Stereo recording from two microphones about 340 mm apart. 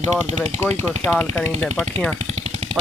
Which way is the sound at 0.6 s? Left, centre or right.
Centre.